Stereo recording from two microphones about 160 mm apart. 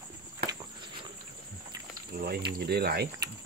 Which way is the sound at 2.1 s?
80° right.